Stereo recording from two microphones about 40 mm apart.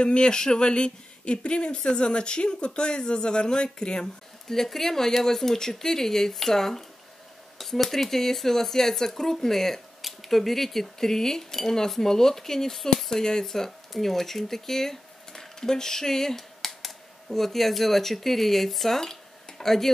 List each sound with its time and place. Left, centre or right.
0.0 s speech: left; by 19.9 s centre